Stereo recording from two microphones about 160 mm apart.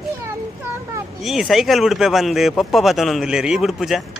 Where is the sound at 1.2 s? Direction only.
Centre (ahead or behind).